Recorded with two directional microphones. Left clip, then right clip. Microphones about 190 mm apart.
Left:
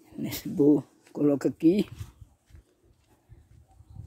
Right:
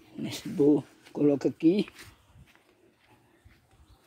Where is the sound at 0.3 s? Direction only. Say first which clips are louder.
Left 1 dB; 25° left (ahead or behind).